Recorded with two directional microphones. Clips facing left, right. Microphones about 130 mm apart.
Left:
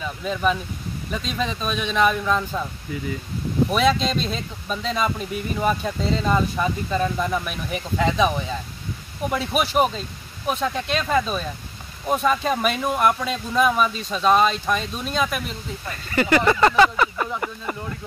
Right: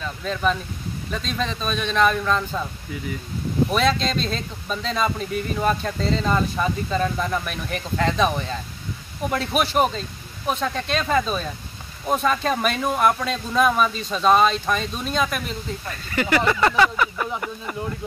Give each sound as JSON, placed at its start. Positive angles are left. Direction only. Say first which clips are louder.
{"t": 0.0, "sound": "speech", "louder": "left 1 dB", "side_deg": 10}
{"t": 3.7, "sound": "speech", "louder": "left 2 dB", "side_deg": 5}
{"t": 16.7, "sound": "a sound", "louder": "left 2 dB", "side_deg": 20}